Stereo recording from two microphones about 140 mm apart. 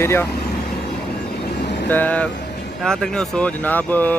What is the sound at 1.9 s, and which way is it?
Speech, 10° left (ahead or behind).